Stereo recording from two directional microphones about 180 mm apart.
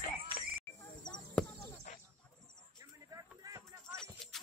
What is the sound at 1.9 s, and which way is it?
Livestock, 45° left (ahead or behind).